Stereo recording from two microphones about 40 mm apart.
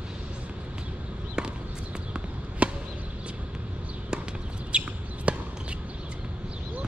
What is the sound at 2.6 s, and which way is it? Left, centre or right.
Chop, right.